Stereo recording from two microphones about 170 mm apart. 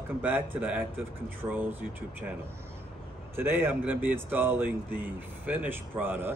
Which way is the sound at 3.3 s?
15° right (ahead or behind).